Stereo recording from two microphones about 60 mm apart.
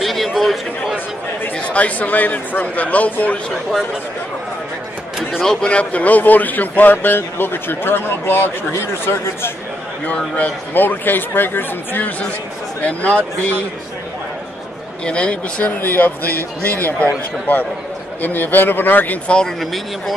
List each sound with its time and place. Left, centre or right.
0.0 s chatter: centre
0.4 s speech: centre
0.9 s speech: left
5.4 s a man's voice: centre; by 9.5 s left
10.0 s a man's voice: left
15.0 s a man's voice: centre
15.8 s a man's voice: left
18.2 s a man's voice: left
19.3 s speech: centre